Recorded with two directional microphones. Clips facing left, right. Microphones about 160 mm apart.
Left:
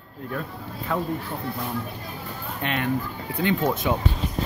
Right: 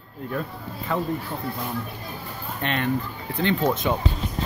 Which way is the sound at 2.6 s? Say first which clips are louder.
Right 1 dB; 5° left (ahead or behind).